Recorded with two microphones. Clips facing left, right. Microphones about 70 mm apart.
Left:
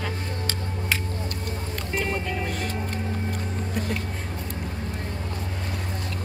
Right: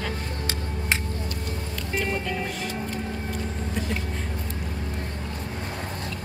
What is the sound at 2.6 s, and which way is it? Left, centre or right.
Vehicle, left.